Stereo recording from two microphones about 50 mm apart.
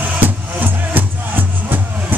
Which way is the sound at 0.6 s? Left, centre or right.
Right.